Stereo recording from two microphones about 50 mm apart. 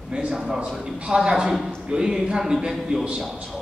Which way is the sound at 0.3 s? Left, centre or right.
Centre.